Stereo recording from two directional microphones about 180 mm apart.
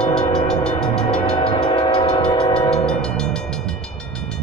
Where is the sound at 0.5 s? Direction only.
5° left (ahead or behind).